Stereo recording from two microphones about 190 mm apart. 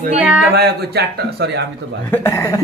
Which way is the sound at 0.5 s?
55° right (ahead or behind).